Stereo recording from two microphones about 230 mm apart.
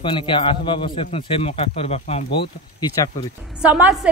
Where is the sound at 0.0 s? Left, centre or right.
Left.